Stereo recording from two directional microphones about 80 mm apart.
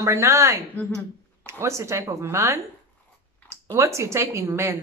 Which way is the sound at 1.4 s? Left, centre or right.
Right.